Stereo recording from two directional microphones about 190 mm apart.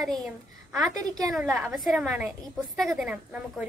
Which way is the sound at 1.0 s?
20° right (ahead or behind).